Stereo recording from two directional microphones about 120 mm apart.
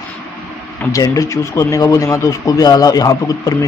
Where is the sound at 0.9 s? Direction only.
25° left (ahead or behind).